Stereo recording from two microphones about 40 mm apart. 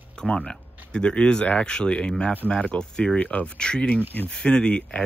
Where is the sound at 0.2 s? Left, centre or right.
Centre; by 3.4 s left.